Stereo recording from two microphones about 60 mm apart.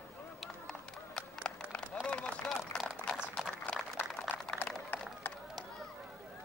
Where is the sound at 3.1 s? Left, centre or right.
Centre.